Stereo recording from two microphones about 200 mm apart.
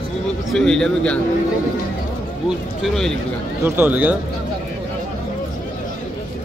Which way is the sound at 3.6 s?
10° right (ahead or behind).